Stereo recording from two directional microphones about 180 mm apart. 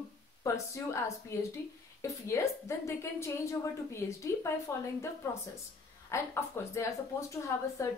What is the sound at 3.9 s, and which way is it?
Speech, 15° left (ahead or behind).